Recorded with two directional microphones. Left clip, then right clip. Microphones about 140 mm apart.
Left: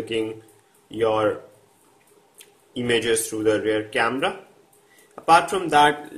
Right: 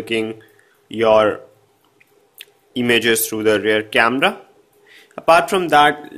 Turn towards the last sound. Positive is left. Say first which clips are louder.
# right 4 dB
turn(degrees=-35)  # may be behind; listen again after turning